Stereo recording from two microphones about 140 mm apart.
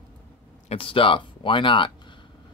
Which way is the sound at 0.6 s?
40° left (ahead or behind).